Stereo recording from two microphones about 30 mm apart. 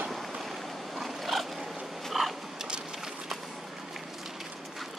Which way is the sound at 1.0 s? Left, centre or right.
Centre.